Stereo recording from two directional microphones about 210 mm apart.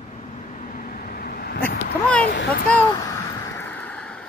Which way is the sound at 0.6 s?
40° left (ahead or behind).